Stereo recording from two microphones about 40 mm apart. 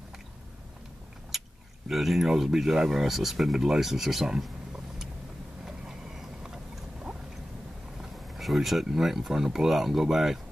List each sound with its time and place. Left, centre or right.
1.3 s biting: centre
1.9 s speech: centre
5.7 s train: centre
6.4 s boat: centre
8.0 s vehicle: centre
8.8 s speech: centre